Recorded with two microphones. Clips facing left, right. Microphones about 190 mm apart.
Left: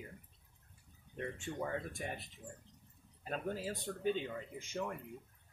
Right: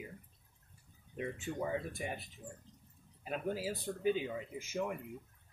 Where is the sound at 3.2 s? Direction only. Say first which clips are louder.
Right 2 dB; 5° right (ahead or behind).